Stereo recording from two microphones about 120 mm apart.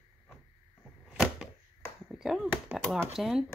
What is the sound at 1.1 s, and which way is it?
Arrow, 5° right (ahead or behind).